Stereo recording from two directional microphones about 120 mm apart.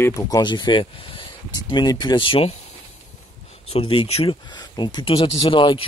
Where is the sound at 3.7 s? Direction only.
50° left (ahead or behind).